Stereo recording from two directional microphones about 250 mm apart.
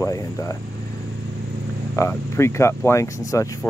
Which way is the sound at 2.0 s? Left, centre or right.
Centre.